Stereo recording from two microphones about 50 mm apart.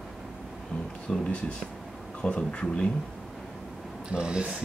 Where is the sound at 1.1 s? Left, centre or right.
Centre.